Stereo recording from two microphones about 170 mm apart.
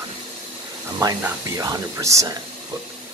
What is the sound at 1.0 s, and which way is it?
Speech, 20° right (ahead or behind).